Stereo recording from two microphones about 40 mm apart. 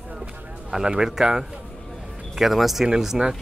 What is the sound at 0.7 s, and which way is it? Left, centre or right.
A man's voice, centre.